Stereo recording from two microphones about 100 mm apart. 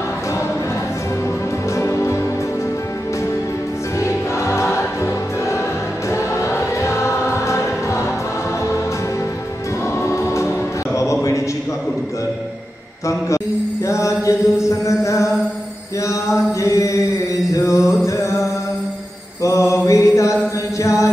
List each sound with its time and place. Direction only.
1.8 s music: 30° left (ahead or behind)
4.0 s music: 30° left (ahead or behind)
6.0 s choir: 30° left (ahead or behind)
9.9 s music: 30° left (ahead or behind)
13.8 s chant: 30° left (ahead or behind)
16.6 s chant: 30° left (ahead or behind)
17.5 s mantra: 30° left (ahead or behind)
18.0 s music: 30° left (ahead or behind)
19.4 s mantra: 30° left (ahead or behind)
20.8 s chant: 30° left (ahead or behind)